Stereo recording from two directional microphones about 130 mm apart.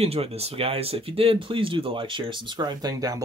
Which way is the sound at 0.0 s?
50° right (ahead or behind).